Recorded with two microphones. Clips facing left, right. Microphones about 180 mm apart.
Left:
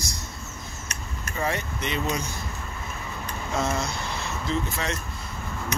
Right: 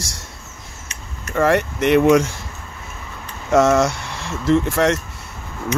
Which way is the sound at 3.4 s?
80° right.